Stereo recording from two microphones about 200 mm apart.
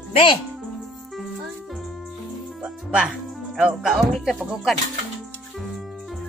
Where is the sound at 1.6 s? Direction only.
Centre (ahead or behind).